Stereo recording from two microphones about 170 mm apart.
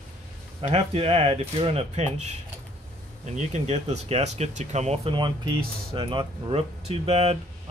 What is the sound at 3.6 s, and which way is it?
Speech, 40° right (ahead or behind).